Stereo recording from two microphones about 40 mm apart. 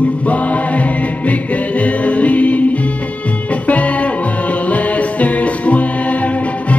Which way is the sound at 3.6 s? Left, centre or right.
Left.